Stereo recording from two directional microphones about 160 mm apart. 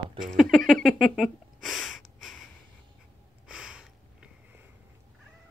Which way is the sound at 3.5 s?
5° right (ahead or behind).